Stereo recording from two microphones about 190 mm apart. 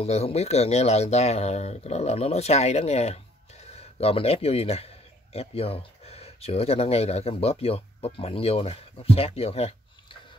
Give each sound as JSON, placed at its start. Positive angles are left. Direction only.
{"t": 0.0, "sound": "speech", "side_deg": 35}